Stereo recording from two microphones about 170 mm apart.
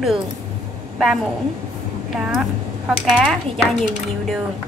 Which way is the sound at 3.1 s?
Centre (ahead or behind).